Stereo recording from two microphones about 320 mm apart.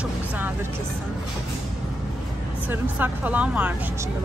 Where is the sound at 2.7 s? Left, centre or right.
Centre.